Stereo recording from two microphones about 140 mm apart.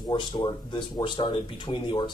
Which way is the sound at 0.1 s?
35° left (ahead or behind).